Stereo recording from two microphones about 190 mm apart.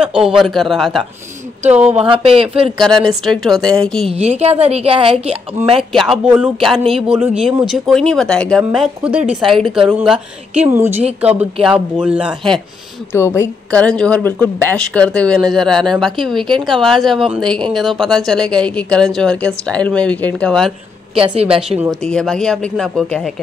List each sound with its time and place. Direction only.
0.0 s speech: 5° right (ahead or behind)
1.6 s speech: 35° right (ahead or behind)
3.0 s speech: centre (ahead or behind)
4.1 s a woman's voice: 35° right (ahead or behind)
5.9 s speech: 5° right (ahead or behind)
13.1 s speech: 15° left (ahead or behind)
21.1 s speech: 30° right (ahead or behind)
21.5 s speech: 5° right (ahead or behind)